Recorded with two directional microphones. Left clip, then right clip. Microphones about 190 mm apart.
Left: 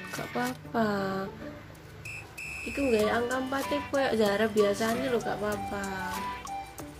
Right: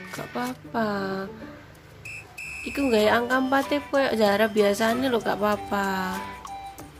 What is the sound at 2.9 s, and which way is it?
Speech, 40° right (ahead or behind).